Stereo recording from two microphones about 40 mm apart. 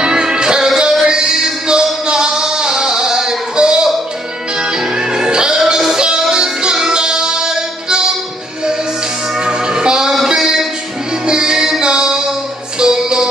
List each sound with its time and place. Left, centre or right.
0.0 s music: centre
9.4 s music: centre
10.3 s a sound: centre
11.2 s music: centre